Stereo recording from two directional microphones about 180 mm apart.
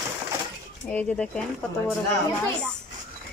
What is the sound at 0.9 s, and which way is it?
Speech, 5° left (ahead or behind).